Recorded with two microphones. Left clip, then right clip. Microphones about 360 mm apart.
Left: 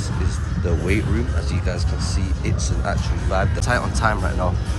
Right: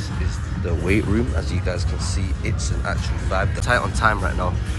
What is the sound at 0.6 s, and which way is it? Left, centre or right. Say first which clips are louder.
Speech: right 1 dB; centre.